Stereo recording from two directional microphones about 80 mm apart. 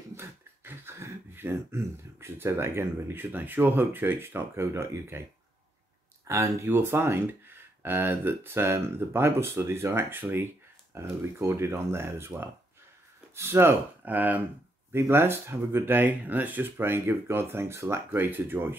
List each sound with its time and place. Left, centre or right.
0.1 s speech: right
6.2 s speech: right
14.9 s speech: right